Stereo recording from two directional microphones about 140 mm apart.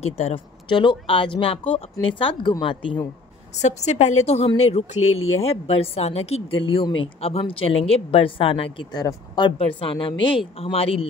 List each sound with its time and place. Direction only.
0.0 s speech: 45° left (ahead or behind)
3.6 s a woman's voice: 55° left (ahead or behind)